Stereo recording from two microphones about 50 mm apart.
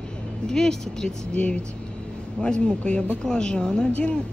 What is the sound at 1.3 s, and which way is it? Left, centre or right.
A woman's voice, left.